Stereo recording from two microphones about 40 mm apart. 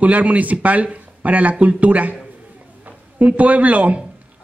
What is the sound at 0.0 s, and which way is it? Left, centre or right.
A man's voice, right.